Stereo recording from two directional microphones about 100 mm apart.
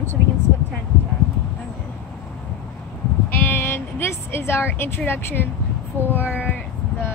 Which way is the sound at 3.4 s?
25° left (ahead or behind).